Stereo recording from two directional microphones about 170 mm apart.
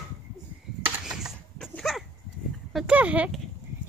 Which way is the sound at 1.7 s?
Centre (ahead or behind).